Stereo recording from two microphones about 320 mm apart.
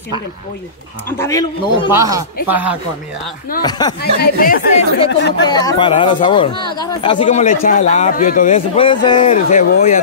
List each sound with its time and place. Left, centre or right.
1.1 s speech: centre
1.9 s speech: centre
3.6 s speech: centre
4.0 s a man's voice: left
5.5 s a man's voice: centre